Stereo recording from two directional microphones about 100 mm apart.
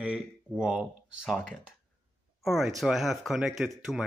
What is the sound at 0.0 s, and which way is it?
Speech, 10° right (ahead or behind).